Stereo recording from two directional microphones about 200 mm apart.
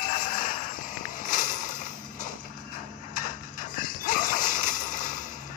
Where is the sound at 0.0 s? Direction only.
45° left (ahead or behind).